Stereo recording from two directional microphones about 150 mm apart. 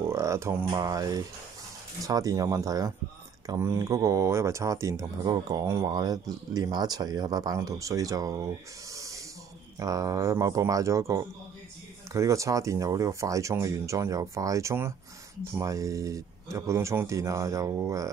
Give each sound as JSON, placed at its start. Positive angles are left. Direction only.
{"t": 0.0, "sound": "a sound", "side_deg": -20}
{"t": 0.7, "sound": "speech", "side_deg": -25}
{"t": 8.9, "sound": "snake", "side_deg": -20}
{"t": 9.8, "sound": "speech", "side_deg": -25}